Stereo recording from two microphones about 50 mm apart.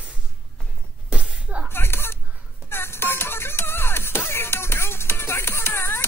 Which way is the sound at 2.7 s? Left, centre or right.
Left.